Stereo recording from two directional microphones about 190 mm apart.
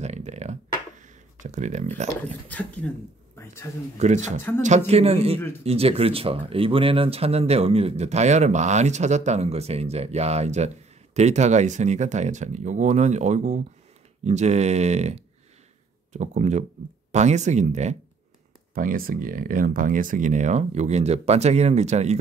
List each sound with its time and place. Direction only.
0.0 s a sound: 35° right (ahead or behind)
2.2 s speech: 10° left (ahead or behind)
4.0 s speech: 35° right (ahead or behind)